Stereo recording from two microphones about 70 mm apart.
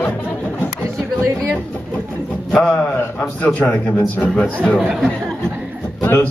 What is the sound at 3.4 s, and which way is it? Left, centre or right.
Speech, centre.